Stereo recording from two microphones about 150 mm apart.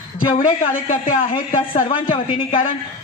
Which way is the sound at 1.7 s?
35° left (ahead or behind).